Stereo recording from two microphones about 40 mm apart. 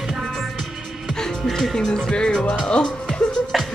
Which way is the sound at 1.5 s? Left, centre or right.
Centre.